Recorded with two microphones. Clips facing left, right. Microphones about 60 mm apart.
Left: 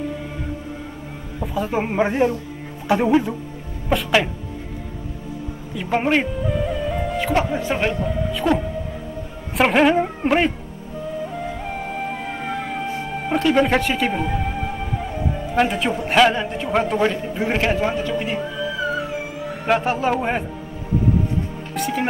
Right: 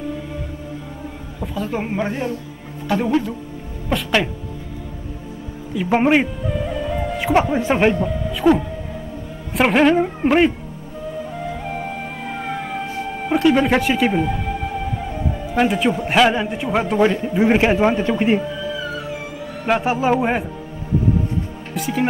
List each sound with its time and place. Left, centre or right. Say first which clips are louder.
1.4 s speech: left 2 dB; centre
3.9 s speech: left 1 dB; centre
5.8 s speech: right 4 dB; centre
6.4 s music: left 1 dB; centre
7.2 s a man's voice: right 6 dB; centre
8.0 s a man's voice: right 3 dB; centre
11.6 s music: even; centre; by 18.1 s right
19.6 s speech: right 1 dB; centre
21.7 s speech: right 1 dB; centre